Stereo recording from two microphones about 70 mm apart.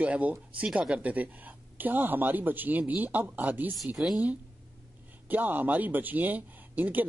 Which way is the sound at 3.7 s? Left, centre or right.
Centre.